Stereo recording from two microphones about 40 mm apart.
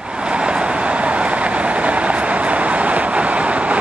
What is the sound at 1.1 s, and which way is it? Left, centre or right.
Vehicle, right.